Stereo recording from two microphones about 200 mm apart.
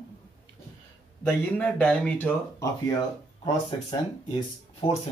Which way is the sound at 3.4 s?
25° left (ahead or behind).